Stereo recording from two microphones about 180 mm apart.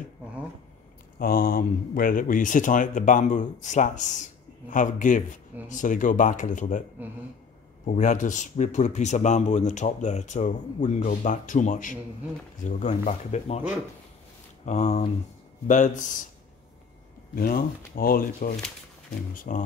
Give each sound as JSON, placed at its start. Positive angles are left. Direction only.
{"t": 1.2, "sound": "speech", "side_deg": 55}
{"t": 7.0, "sound": "speech", "side_deg": -10}
{"t": 7.8, "sound": "speech", "side_deg": 40}
{"t": 14.6, "sound": "speech", "side_deg": 40}
{"t": 17.4, "sound": "speech", "side_deg": 55}